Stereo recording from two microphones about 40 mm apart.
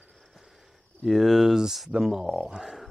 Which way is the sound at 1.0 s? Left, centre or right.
Centre.